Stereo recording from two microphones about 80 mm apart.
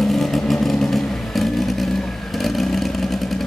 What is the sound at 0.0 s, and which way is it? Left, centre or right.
Vehicle, centre.